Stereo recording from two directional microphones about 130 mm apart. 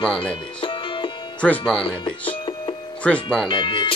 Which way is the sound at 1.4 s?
5° left (ahead or behind).